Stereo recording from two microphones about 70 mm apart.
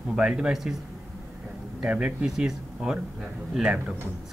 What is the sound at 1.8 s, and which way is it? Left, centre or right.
Speech, centre.